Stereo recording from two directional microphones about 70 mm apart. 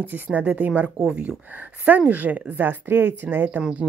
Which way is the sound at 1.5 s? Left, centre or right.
Right.